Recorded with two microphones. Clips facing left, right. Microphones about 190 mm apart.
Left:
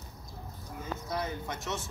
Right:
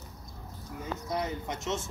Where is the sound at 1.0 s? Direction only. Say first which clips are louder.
Right 2 dB; 20° right (ahead or behind).